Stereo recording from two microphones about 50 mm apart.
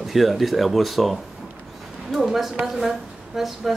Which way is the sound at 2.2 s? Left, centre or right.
Centre.